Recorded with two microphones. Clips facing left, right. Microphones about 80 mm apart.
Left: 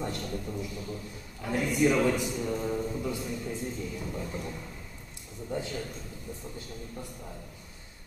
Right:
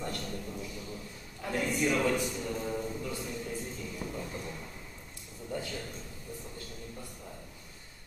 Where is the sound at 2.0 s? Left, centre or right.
Centre.